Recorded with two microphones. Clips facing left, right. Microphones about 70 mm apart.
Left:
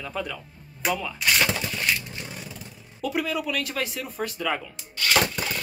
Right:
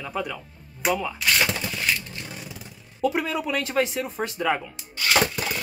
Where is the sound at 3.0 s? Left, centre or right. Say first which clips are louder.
Right 2 dB; right.